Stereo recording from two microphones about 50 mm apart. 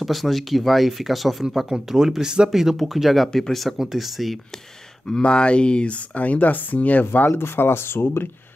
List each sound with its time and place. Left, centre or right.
0.0 s speech: centre
5.0 s speech: centre
7.1 s speech: left